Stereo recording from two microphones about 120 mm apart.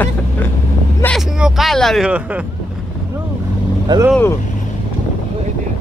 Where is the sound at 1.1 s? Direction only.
5° right (ahead or behind).